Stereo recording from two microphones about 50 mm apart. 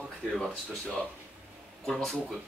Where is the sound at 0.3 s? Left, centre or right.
Centre.